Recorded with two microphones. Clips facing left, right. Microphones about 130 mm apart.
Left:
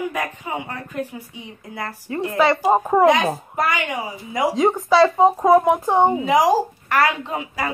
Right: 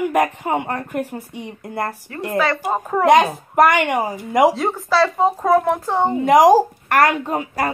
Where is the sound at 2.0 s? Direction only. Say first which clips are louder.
Left 4 dB; 20° left (ahead or behind).